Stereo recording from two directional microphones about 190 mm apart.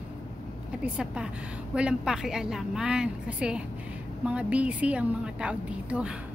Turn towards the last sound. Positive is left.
turn(degrees=-5)  # may be behind; listen again after turning